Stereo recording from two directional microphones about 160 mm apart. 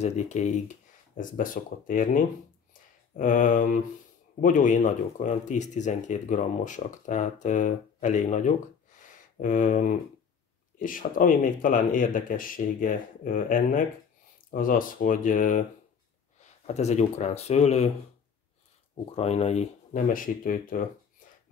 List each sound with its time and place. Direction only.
0.0 s speech: 45° left (ahead or behind)
19.1 s speech: 40° left (ahead or behind); by 20.8 s 60° left (ahead or behind)